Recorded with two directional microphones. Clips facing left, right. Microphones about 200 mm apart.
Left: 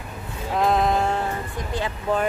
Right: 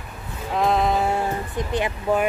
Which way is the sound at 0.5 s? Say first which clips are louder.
Even; centre (ahead or behind).